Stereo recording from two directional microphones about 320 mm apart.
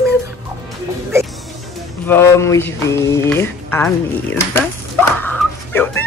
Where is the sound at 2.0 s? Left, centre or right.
Centre.